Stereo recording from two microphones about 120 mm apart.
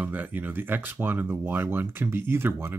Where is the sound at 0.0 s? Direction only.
15° right (ahead or behind).